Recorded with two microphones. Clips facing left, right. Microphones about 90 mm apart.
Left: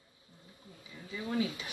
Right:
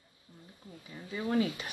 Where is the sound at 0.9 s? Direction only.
45° right (ahead or behind).